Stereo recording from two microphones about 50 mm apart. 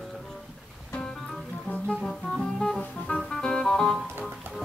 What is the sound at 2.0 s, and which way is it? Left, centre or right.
Music, centre.